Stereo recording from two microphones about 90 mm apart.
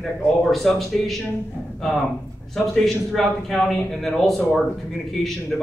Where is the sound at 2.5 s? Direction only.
5° left (ahead or behind).